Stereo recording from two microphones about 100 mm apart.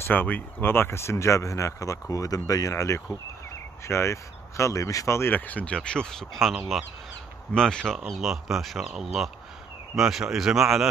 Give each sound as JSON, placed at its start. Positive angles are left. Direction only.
{"t": 0.0, "sound": "speech", "side_deg": 20}